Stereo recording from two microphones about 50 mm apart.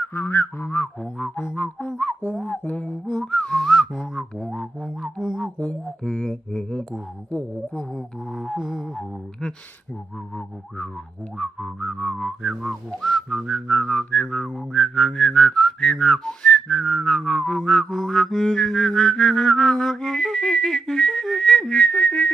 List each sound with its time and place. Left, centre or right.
0.0 s a sound: left
1.5 s a sound: left
3.1 s whistling: centre
3.3 s a sound: centre
3.6 s speech: centre
5.6 s whistling: centre
7.2 s a sound: left
8.5 s music: centre
11.3 s whistling: centre
12.6 s speech: centre
13.5 s whistling: centre
21.9 s whistling: left